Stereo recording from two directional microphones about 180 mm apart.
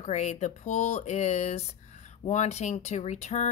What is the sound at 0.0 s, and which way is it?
A woman's voice, 40° left (ahead or behind).